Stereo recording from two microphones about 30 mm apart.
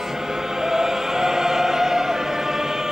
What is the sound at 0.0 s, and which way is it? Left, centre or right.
Choir, centre.